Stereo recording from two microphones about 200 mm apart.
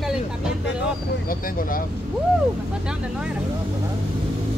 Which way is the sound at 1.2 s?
45° left (ahead or behind).